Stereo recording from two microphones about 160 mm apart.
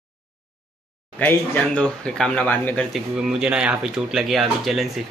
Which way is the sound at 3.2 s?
5° right (ahead or behind).